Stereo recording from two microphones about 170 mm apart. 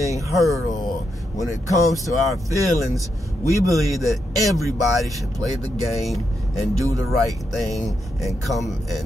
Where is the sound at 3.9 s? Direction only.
Centre (ahead or behind).